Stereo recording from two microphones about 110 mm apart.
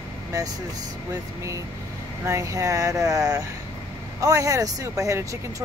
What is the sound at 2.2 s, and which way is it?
Speech, 25° right (ahead or behind).